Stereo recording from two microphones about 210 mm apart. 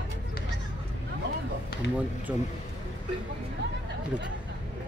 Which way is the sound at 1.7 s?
45° left (ahead or behind).